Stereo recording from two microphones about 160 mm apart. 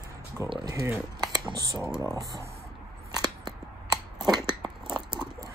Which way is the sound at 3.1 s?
25° right (ahead or behind).